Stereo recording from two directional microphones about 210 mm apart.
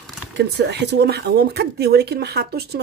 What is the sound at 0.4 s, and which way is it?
Speech, 55° right (ahead or behind).